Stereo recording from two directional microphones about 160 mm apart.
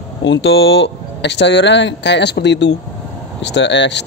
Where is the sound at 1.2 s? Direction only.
90° left.